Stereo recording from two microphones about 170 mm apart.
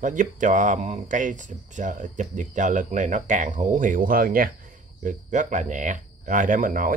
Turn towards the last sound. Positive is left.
turn(degrees=-50)  # may be behind; listen again after turning